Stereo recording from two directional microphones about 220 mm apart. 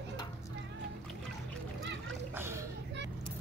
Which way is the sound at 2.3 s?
10° right (ahead or behind).